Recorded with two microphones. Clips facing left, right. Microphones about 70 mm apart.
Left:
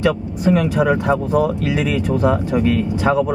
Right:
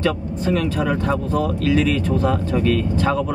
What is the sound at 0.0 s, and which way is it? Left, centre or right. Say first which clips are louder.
Speech: left 4 dB; left.